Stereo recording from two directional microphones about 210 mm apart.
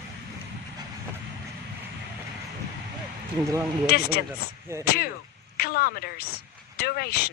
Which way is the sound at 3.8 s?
45° left (ahead or behind).